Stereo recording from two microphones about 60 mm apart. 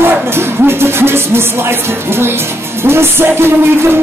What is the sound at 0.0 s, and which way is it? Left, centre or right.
Music, right.